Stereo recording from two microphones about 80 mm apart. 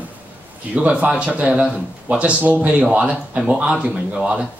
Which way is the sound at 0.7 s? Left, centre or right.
Centre.